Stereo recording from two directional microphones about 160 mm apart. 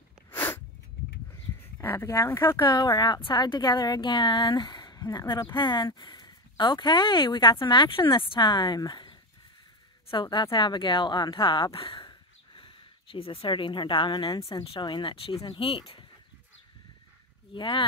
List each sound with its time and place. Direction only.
0.3 s sneeze: 10° left (ahead or behind)
1.3 s a sound: 15° left (ahead or behind)
2.6 s speech: 25° left (ahead or behind)
17.6 s speech: 30° left (ahead or behind)